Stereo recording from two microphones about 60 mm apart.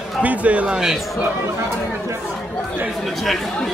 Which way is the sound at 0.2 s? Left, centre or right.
Right.